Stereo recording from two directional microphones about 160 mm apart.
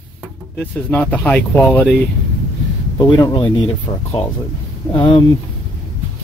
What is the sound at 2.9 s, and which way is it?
Speech, 25° left (ahead or behind).